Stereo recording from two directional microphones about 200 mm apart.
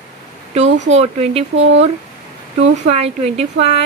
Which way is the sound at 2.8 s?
35° right (ahead or behind).